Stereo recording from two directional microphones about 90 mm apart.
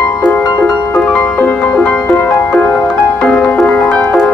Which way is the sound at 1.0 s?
20° left (ahead or behind).